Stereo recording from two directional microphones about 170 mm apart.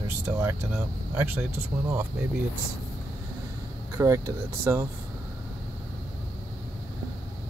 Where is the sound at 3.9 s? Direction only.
20° right (ahead or behind).